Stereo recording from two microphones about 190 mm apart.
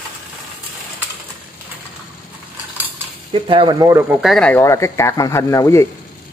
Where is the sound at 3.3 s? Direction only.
30° right (ahead or behind).